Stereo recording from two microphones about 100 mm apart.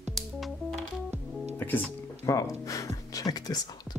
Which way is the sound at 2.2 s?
35° left (ahead or behind).